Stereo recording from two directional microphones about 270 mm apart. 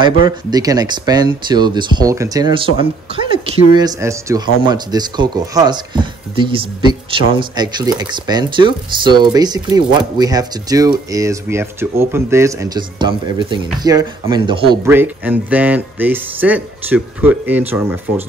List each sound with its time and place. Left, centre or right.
0.5 s speech: centre
14.9 s speech: centre